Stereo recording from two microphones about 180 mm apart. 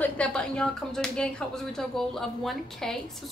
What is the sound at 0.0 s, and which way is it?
A woman's voice, 5° left (ahead or behind).